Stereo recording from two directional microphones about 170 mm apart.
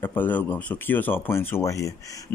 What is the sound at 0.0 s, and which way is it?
Speech, 10° left (ahead or behind).